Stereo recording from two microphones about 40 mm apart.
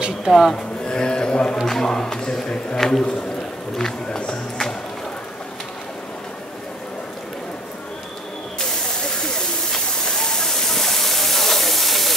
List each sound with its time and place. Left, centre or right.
0.3 s speech: centre
0.8 s speech: centre
1.7 s a sound: centre
2.8 s a man's voice: centre
3.7 s a sound: centre
9.2 s hiss: centre